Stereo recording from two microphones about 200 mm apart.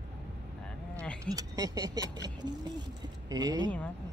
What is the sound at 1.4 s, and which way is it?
Speech, 20° right (ahead or behind).